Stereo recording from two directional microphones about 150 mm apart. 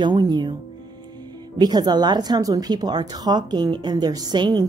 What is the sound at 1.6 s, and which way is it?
A woman's voice, 25° right (ahead or behind).